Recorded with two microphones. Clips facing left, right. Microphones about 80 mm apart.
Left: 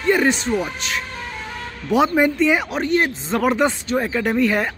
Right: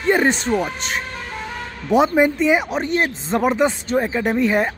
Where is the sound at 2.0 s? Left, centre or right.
Centre.